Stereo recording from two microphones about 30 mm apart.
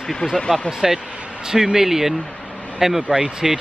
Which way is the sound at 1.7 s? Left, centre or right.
Centre.